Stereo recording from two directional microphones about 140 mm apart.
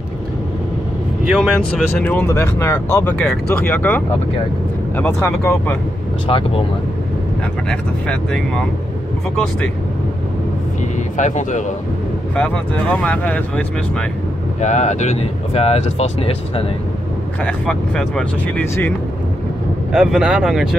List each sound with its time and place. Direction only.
1.2 s speech: 5° right (ahead or behind)
2.0 s speech: 10° left (ahead or behind)
6.2 s speech: 40° left (ahead or behind)
7.6 s speech: 5° left (ahead or behind)
10.8 s vehicle: 60° left (ahead or behind)
12.4 s speech: 10° left (ahead or behind)
14.6 s speech: 55° left (ahead or behind)
17.4 s speech: 5° left (ahead or behind)
19.9 s speech: 5° right (ahead or behind)